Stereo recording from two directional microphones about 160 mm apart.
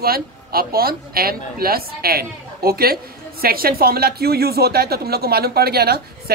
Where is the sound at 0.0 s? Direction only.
70° right (ahead or behind).